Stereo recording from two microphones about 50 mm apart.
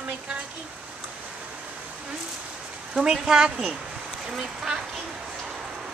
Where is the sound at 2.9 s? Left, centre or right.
Centre.